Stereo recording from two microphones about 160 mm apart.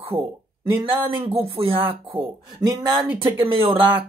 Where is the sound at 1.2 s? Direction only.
35° right (ahead or behind).